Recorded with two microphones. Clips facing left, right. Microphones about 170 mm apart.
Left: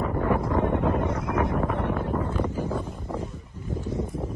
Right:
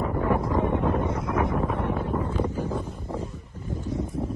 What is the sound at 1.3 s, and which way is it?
Wind noise, 70° left (ahead or behind).